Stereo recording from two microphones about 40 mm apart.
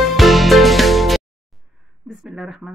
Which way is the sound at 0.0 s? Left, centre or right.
Centre.